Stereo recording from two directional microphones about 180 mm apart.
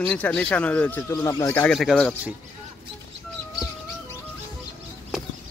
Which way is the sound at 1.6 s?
5° left (ahead or behind).